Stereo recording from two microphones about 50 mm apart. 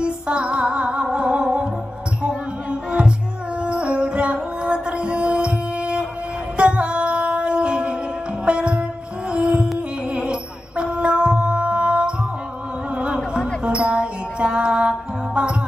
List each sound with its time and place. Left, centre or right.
0.0 s music: right
10.8 s mantra: right
12.9 s music: right